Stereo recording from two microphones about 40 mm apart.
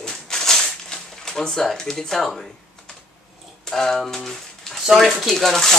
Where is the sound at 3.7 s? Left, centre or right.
Centre.